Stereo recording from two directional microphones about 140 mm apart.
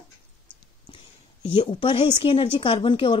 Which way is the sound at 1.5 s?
35° left (ahead or behind).